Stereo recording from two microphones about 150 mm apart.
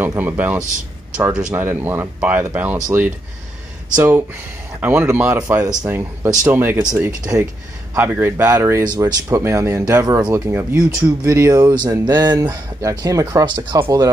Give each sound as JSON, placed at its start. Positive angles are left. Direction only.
{"t": 0.0, "sound": "speech", "side_deg": -10}
{"t": 5.7, "sound": "speech", "side_deg": -25}